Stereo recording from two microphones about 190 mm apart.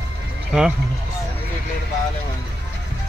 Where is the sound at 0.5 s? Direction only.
5° right (ahead or behind).